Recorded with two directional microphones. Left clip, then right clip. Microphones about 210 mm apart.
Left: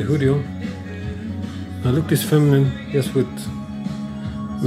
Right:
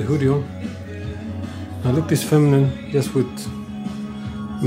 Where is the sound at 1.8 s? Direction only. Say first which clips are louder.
Even; 15° right (ahead or behind).